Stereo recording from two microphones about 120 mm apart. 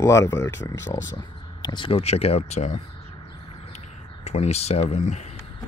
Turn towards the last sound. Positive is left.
turn(degrees=80)